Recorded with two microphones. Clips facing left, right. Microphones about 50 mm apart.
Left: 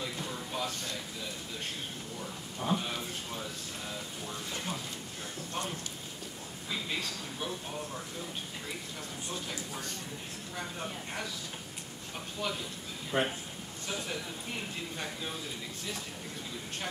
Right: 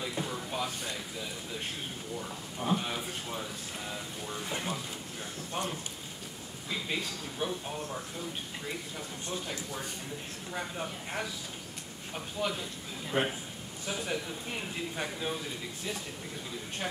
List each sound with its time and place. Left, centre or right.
0.0 s music: centre
2.6 s a sound: centre
9.3 s speech: centre
12.4 s speech: centre